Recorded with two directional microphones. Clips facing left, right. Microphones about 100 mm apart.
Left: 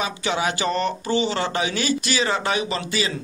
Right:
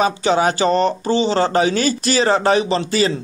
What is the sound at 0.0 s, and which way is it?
A man's voice, 40° right (ahead or behind).